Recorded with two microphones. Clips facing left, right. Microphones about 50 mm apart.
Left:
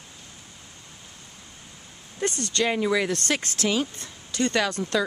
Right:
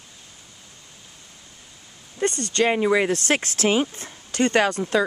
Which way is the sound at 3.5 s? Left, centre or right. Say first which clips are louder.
Right 5 dB; right.